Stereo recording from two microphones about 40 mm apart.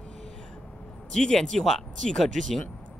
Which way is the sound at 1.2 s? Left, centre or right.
Centre.